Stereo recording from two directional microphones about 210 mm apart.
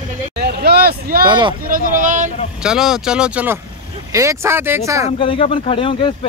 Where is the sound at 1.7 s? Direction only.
40° right (ahead or behind).